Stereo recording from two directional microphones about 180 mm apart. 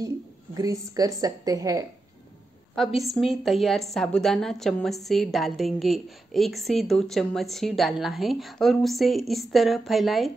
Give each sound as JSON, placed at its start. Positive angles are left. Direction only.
{"t": 0.6, "sound": "a woman's voice", "side_deg": -20}
{"t": 2.7, "sound": "a woman's voice", "side_deg": 0}